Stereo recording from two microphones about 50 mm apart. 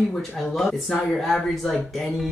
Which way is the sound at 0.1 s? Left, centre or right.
Centre.